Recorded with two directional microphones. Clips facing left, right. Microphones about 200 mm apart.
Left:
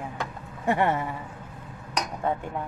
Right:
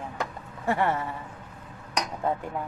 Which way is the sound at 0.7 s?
20° left (ahead or behind).